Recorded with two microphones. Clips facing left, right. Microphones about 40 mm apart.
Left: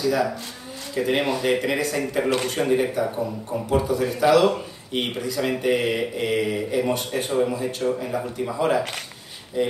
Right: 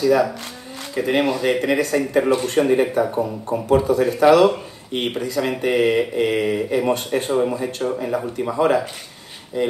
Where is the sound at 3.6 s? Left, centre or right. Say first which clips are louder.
Right 6 dB; right.